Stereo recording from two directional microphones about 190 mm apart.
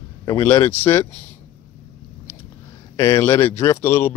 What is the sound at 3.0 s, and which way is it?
Speech, 15° left (ahead or behind).